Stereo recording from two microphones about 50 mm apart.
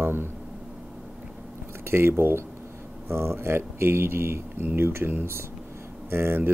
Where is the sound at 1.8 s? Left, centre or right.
Right.